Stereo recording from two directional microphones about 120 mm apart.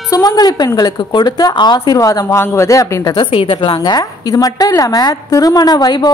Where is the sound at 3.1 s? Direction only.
45° left (ahead or behind).